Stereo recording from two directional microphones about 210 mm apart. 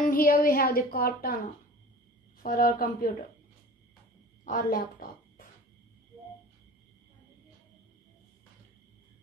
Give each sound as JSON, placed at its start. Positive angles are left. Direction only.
{"t": 0.0, "sound": "a woman's voice", "side_deg": 40}
{"t": 2.4, "sound": "a woman's voice", "side_deg": 40}
{"t": 4.5, "sound": "a woman's voice", "side_deg": 45}